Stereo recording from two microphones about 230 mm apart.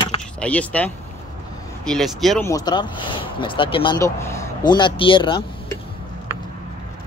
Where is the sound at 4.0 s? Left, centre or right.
Centre.